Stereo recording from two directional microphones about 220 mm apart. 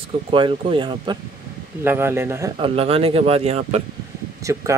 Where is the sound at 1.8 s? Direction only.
10° right (ahead or behind).